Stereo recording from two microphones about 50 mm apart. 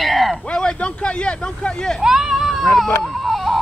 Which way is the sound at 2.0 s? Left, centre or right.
Centre.